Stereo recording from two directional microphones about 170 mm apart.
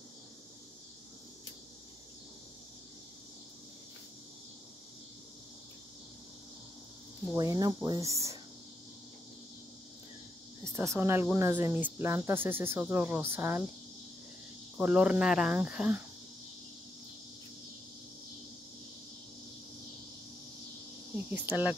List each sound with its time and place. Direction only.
7.3 s speech: 20° right (ahead or behind)
10.6 s speech: 15° right (ahead or behind)
11.3 s cricket: 15° right (ahead or behind)
14.8 s cricket: 5° right (ahead or behind)
21.3 s cricket: 10° right (ahead or behind)